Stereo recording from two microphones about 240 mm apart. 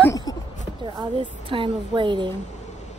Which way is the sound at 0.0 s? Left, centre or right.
Centre.